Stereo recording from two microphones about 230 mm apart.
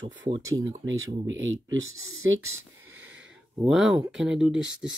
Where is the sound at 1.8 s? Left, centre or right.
Centre.